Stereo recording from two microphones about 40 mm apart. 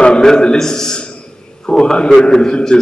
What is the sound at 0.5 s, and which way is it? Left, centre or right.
A man's voice, centre.